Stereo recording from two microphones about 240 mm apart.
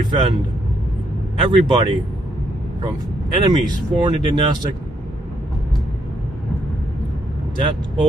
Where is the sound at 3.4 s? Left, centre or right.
Centre.